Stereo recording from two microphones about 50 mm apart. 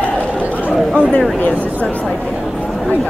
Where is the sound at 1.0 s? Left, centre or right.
Left.